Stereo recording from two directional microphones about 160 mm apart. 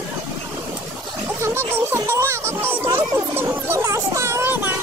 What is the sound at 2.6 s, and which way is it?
A child's voice, 15° right (ahead or behind).